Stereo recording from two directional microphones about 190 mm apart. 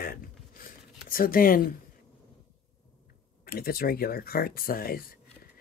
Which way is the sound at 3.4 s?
50° left (ahead or behind).